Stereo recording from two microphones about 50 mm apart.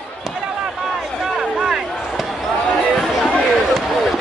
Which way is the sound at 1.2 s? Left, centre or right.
Centre.